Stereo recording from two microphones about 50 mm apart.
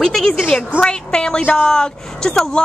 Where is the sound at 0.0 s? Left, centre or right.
Centre.